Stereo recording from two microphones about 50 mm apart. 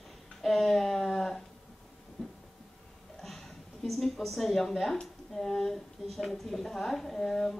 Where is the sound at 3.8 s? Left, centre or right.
Centre.